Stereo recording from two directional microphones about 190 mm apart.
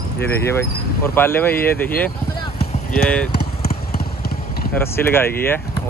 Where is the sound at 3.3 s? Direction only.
55° left (ahead or behind).